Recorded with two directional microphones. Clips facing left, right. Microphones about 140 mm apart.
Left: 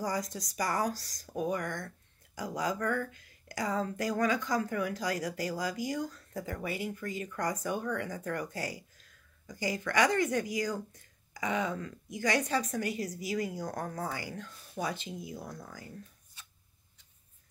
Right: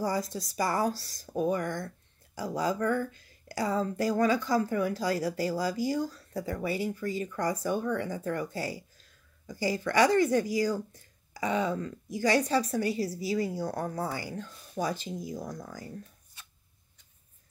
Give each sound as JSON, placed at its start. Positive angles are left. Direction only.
{"t": 0.0, "sound": "speech", "side_deg": -30}